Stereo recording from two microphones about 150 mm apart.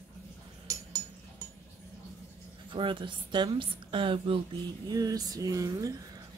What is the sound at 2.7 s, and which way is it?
A woman's voice, 35° right (ahead or behind).